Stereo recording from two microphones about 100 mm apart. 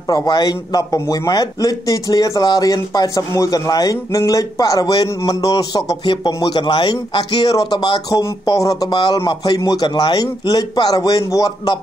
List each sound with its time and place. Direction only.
0.1 s a man's voice: 40° left (ahead or behind)
6.0 s speech: 50° left (ahead or behind)
8.2 s a man's voice: 35° left (ahead or behind)
8.9 s a man's voice: 45° left (ahead or behind)